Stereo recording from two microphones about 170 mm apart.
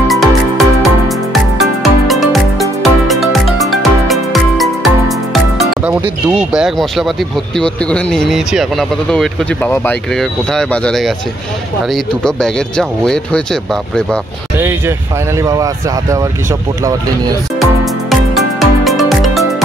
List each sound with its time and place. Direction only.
0.1 s music: centre (ahead or behind)
11.9 s speech: 5° left (ahead or behind)
14.6 s speech: 15° right (ahead or behind)
18.1 s music: centre (ahead or behind)